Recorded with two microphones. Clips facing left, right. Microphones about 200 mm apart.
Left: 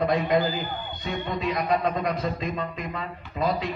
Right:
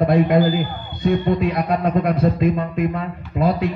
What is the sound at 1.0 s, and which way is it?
Speech, 60° right (ahead or behind).